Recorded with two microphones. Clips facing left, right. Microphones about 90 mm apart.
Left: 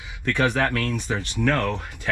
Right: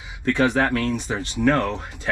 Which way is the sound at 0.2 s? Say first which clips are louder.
Right 2 dB; 20° right (ahead or behind).